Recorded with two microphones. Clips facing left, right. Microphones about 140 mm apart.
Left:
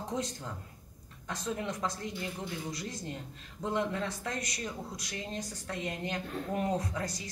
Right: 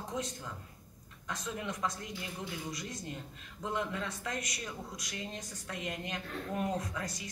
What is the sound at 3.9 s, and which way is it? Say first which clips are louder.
Speech: left 3 dB; 35° left (ahead or behind).